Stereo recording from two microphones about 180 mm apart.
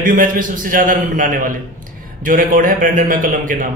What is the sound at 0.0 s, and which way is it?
A man's voice, 50° right (ahead or behind).